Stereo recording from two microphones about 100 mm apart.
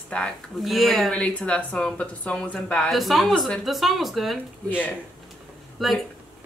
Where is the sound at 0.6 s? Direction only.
Centre (ahead or behind).